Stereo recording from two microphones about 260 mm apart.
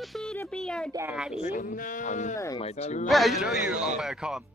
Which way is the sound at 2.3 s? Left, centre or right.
Centre.